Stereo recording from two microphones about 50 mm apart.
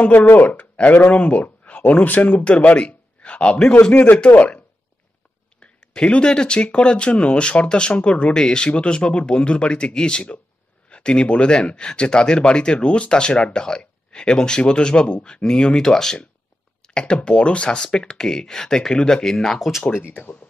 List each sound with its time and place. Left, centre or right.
0.0 s speech: left
5.9 s speech: centre
20.2 s speech: left